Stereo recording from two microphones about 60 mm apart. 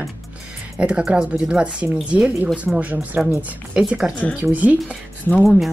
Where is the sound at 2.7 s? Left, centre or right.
Centre.